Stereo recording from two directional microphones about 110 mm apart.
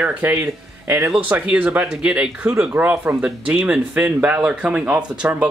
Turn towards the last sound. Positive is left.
turn(degrees=-10)  # may be behind; listen again after turning